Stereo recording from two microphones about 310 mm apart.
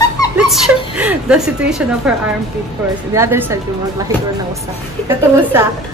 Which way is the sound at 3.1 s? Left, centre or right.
Centre.